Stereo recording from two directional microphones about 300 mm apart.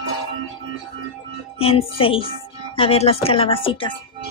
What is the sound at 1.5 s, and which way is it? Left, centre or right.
Speech, centre.